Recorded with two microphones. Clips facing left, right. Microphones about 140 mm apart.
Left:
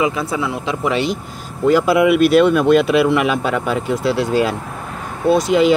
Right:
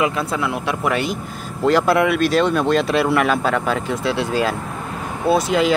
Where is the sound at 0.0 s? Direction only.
Centre (ahead or behind).